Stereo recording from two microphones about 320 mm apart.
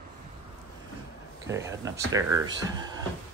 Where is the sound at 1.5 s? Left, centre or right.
Centre.